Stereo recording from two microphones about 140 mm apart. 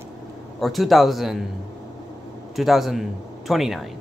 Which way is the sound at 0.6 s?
Centre (ahead or behind).